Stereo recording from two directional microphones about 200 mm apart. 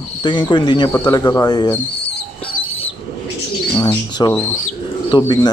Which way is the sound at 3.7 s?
20° left (ahead or behind).